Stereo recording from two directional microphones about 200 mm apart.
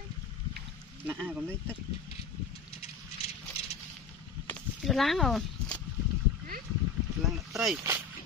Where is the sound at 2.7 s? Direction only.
30° left (ahead or behind).